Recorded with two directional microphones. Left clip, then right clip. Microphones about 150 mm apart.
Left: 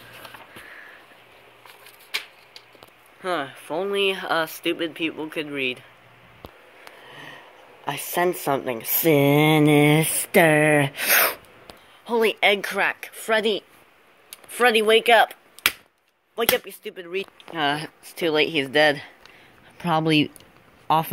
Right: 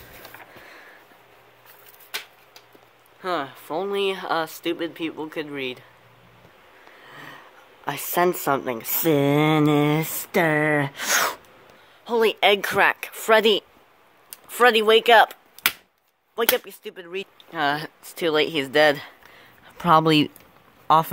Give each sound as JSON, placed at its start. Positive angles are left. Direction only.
{"t": 3.2, "sound": "speech", "side_deg": -10}
{"t": 7.1, "sound": "speech", "side_deg": -10}
{"t": 12.0, "sound": "a woman's voice", "side_deg": -10}
{"t": 12.5, "sound": "speech", "side_deg": -25}
{"t": 14.5, "sound": "speech", "side_deg": -20}
{"t": 16.3, "sound": "speech", "side_deg": -15}
{"t": 16.6, "sound": "speech", "side_deg": 0}
{"t": 17.6, "sound": "speech", "side_deg": -10}
{"t": 19.8, "sound": "speech", "side_deg": -25}